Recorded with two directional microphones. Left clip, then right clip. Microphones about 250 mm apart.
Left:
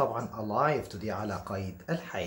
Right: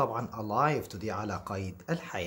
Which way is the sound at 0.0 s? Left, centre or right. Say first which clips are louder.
Left 1 dB; right.